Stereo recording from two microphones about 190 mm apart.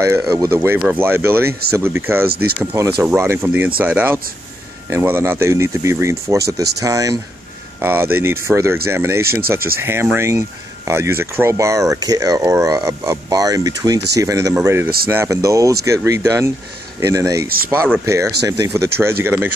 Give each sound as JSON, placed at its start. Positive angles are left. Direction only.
{"t": 0.0, "sound": "speech", "side_deg": -15}